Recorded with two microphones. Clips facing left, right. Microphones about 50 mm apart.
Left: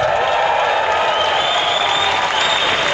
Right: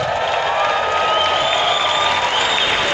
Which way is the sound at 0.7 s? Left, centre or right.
Centre.